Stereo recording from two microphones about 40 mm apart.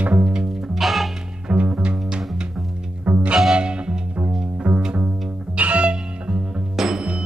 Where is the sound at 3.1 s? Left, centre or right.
Right.